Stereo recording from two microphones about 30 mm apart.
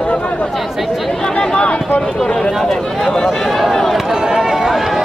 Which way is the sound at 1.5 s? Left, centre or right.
Left.